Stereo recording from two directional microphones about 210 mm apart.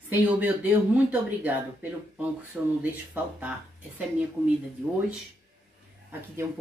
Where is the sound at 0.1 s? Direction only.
10° right (ahead or behind).